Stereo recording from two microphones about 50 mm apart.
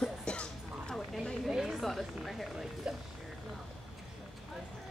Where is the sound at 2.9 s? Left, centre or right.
Centre.